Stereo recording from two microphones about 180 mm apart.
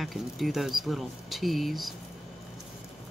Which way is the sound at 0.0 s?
Centre (ahead or behind).